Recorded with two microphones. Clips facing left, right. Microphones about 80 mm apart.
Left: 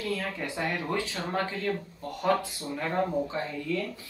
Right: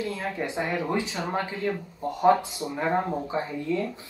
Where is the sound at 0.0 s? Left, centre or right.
Right.